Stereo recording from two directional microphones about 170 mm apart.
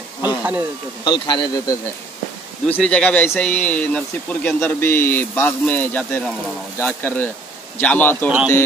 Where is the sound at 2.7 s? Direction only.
5° left (ahead or behind).